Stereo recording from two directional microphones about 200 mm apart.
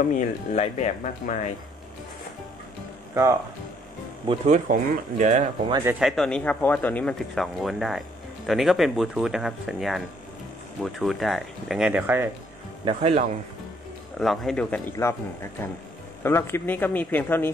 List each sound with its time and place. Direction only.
0.0 s speech: 40° left (ahead or behind)
4.3 s speech: 40° right (ahead or behind)
5.9 s speech: centre (ahead or behind)
12.8 s speech: 30° right (ahead or behind)
14.2 s speech: centre (ahead or behind)
16.2 s speech: 10° left (ahead or behind)